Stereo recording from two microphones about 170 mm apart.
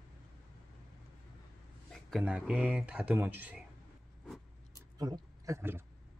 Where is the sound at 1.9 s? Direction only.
Centre (ahead or behind).